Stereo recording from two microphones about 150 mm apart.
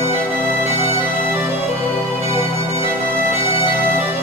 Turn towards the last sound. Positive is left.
turn(degrees=35)  # may be behind; listen again after turning